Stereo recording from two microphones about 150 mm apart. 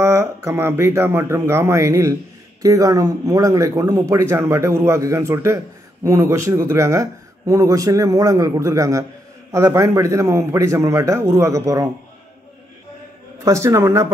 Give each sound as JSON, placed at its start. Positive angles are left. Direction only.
{"t": 0.0, "sound": "speech", "side_deg": -20}
{"t": 13.4, "sound": "speech", "side_deg": -20}